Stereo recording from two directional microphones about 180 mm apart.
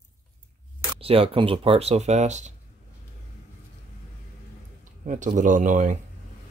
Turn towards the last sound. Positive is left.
turn(degrees=-45)  # may be behind; listen again after turning